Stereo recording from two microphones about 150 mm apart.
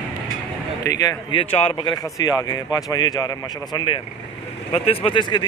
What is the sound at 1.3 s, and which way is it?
Speech, 35° left (ahead or behind).